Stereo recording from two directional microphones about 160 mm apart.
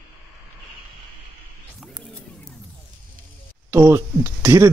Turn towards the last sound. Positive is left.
turn(degrees=-15)  # may be behind; listen again after turning